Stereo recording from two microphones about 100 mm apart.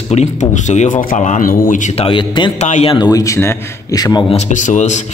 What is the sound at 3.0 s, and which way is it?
Speech, 35° left (ahead or behind).